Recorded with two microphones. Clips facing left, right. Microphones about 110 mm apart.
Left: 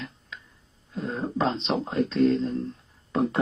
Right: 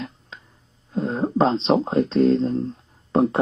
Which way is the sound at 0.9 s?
35° right (ahead or behind).